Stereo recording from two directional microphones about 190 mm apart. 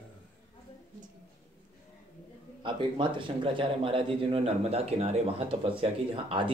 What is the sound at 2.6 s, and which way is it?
Speech, 25° right (ahead or behind).